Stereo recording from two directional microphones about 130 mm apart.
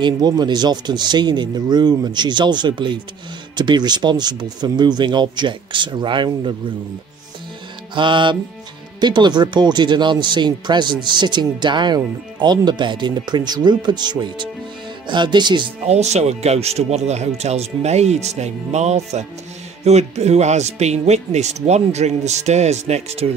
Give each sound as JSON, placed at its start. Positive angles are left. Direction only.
{"t": 0.0, "sound": "speech", "side_deg": -35}
{"t": 7.9, "sound": "speech", "side_deg": -40}
{"t": 15.9, "sound": "speech", "side_deg": -55}